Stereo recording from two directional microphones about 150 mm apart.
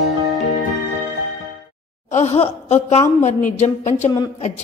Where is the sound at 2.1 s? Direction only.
45° left (ahead or behind).